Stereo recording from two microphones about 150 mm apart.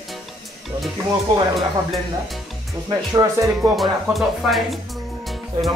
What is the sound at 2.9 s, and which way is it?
Speech, 25° right (ahead or behind).